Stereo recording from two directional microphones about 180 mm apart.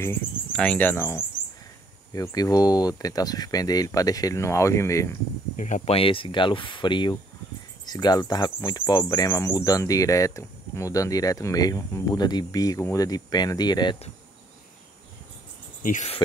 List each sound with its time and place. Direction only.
0.0 s speech: 10° left (ahead or behind)
5.6 s speech: 40° left (ahead or behind); by 13.9 s 25° left (ahead or behind)
15.8 s speech: 45° left (ahead or behind)